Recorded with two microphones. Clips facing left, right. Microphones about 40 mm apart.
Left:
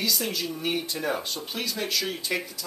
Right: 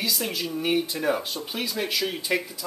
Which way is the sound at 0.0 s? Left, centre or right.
Centre.